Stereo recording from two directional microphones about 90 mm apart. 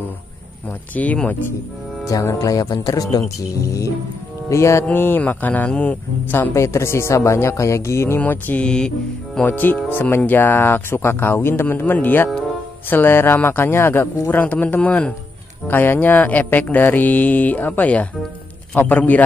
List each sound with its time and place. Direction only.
0.9 s speech: 15° left (ahead or behind)
2.0 s speech: 35° left (ahead or behind); by 6.5 s 20° left (ahead or behind)
6.5 s speech: 30° left (ahead or behind)
8.2 s speech: 20° left (ahead or behind)
9.5 s speech: 20° left (ahead or behind)